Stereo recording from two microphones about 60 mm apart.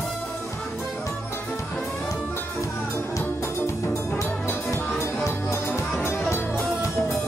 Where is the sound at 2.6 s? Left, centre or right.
Left.